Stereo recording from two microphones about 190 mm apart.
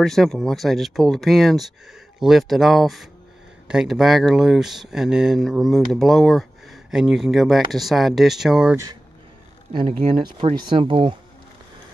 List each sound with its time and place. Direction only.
0.0 s speech: centre (ahead or behind)
9.7 s speech: 30° right (ahead or behind)